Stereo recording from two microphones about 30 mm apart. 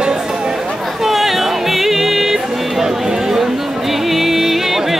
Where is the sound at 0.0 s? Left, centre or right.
Right.